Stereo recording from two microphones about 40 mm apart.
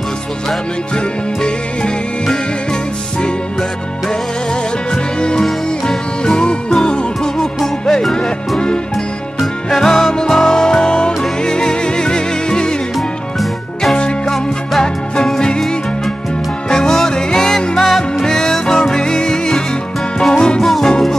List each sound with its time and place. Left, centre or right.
4.9 s music: left
8.1 s music: centre
9.8 s music: centre
14.2 s music: centre
16.6 s music: centre
20.6 s music: centre